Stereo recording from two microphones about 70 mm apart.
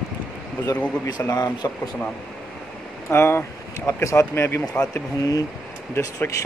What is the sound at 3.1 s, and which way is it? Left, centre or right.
Speech, left.